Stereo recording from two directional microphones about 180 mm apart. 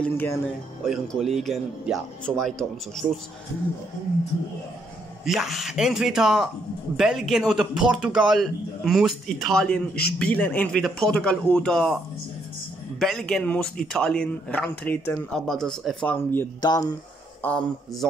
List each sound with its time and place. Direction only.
0.0 s speech: 10° left (ahead or behind)
5.2 s speech: centre (ahead or behind)
13.0 s speech: centre (ahead or behind)
16.6 s speech: 20° left (ahead or behind)
17.4 s speech: 5° left (ahead or behind)